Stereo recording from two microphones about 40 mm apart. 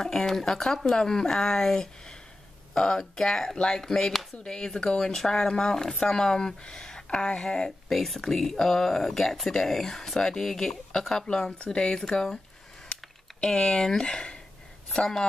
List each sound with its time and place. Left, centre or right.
0.0 s speech: centre
5.1 s speech: centre
7.9 s speech: centre
13.4 s speech: left